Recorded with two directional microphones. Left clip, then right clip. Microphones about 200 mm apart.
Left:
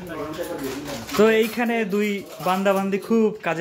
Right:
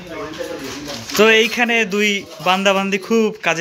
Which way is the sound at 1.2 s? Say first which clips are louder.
Right 6 dB; 5° left (ahead or behind).